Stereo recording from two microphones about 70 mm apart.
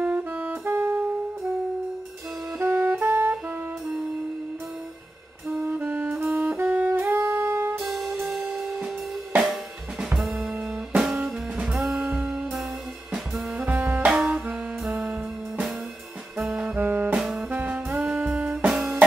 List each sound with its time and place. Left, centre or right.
0.0 s saxophone: right
2.6 s jazz: right
5.5 s music: right
6.0 s saxophone: right
7.2 s music: right
7.8 s music: centre
9.4 s drum kit: centre
11.0 s music: centre
13.7 s saxophone: right
14.0 s music: centre
16.7 s saxophone: right
17.2 s music: centre
18.7 s music: centre